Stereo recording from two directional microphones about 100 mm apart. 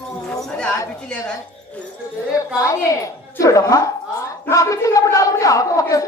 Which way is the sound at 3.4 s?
35° left (ahead or behind).